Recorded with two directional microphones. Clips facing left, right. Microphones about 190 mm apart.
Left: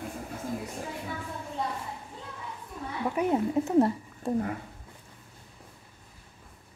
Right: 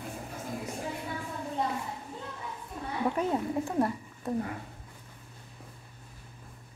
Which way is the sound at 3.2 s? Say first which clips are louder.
Left 8 dB; 20° left (ahead or behind).